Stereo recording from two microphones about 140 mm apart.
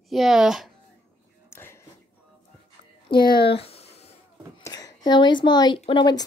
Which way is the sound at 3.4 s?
45° left (ahead or behind).